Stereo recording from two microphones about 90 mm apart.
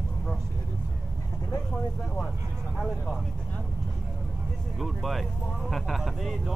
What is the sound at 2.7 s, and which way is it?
Speech, 5° left (ahead or behind).